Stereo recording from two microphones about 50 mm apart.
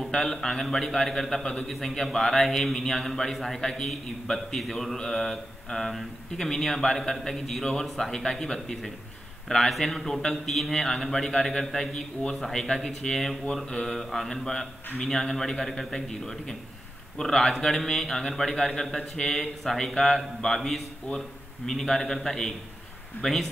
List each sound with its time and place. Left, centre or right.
0.0 s a man's voice: centre
21.1 s speech: left
21.6 s a man's voice: centre